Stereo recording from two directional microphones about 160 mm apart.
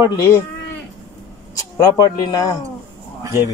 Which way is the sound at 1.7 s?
20° left (ahead or behind).